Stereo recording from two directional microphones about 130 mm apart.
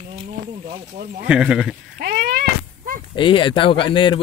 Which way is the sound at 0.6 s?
85° right.